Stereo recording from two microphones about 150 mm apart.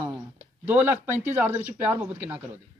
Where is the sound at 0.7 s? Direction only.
15° right (ahead or behind).